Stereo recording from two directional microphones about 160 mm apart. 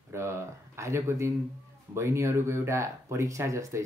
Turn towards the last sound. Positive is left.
turn(degrees=-20)  # may be behind; listen again after turning